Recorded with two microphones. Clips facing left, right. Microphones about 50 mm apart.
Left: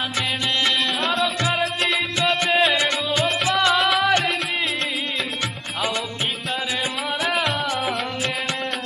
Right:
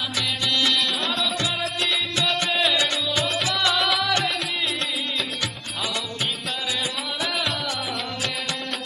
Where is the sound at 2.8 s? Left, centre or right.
Left.